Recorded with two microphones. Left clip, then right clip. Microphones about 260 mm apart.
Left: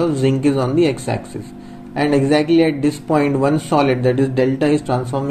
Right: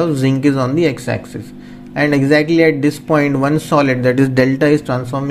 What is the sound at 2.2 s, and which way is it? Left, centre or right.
Speech, right.